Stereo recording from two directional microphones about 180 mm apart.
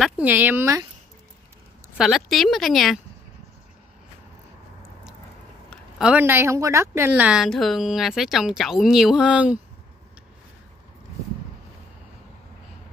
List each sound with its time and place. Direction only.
0.0 s speech: 10° right (ahead or behind)
2.0 s a woman's voice: centre (ahead or behind)
5.7 s a woman's voice: 5° right (ahead or behind)